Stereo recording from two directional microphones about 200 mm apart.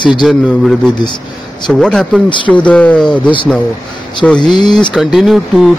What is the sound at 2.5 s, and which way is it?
Speech, 5° left (ahead or behind).